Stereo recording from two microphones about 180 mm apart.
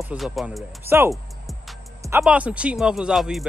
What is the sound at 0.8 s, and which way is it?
Speech, 15° right (ahead or behind).